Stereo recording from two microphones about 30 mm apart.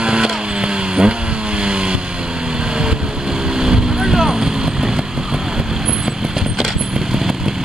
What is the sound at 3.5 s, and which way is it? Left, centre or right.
Vehicle, right.